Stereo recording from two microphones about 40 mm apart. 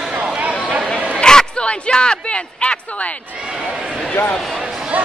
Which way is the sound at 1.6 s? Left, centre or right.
Left.